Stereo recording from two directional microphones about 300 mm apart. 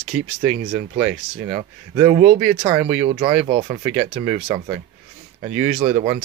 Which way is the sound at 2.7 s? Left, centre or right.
Centre.